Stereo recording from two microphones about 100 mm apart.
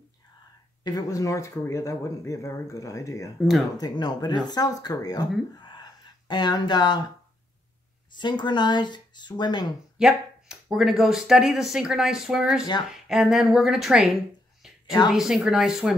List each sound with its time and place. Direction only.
0.8 s speech: 35° left (ahead or behind)
3.7 s speech: 45° left (ahead or behind)
5.6 s a sound: 50° left (ahead or behind)
8.2 s speech: 50° left (ahead or behind)
9.9 s speech: 5° right (ahead or behind)